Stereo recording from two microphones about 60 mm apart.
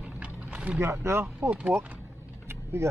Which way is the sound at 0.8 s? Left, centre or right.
Right.